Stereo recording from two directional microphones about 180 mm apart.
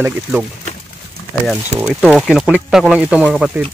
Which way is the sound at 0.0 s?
10° right (ahead or behind).